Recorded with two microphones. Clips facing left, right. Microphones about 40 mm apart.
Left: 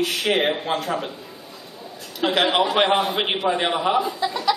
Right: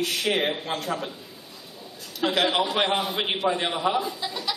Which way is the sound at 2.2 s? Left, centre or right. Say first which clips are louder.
Left 4 dB; centre.